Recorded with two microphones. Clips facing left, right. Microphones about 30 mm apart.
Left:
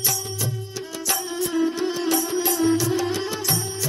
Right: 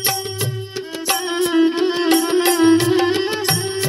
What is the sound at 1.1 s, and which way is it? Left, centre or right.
Music, right.